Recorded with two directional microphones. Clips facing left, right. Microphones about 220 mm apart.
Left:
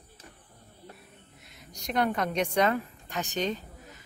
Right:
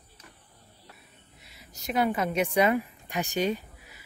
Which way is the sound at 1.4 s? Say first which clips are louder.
Right 2 dB; 5° right (ahead or behind).